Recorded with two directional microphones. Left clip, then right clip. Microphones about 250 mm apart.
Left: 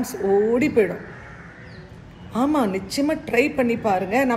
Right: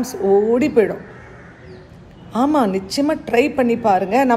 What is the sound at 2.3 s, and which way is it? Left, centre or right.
A woman's voice, centre.